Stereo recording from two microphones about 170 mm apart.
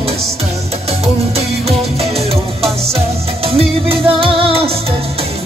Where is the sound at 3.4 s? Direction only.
35° right (ahead or behind).